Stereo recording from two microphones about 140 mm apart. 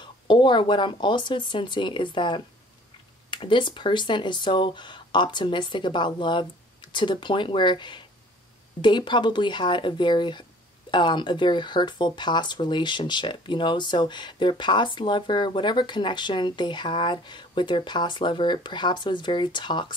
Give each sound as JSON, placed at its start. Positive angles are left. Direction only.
{"t": 0.0, "sound": "speech", "side_deg": 35}